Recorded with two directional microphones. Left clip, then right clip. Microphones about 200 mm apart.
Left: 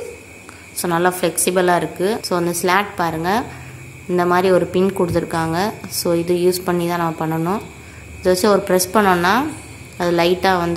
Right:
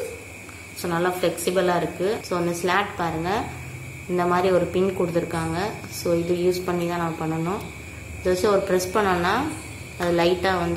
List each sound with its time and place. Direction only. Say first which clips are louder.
0.8 s a woman's voice: left 6 dB; 50° left (ahead or behind)